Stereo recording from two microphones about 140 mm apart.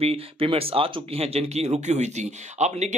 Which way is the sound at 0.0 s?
45° right (ahead or behind).